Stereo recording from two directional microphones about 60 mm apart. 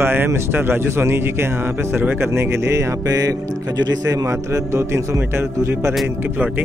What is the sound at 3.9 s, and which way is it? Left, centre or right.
A man's voice, right.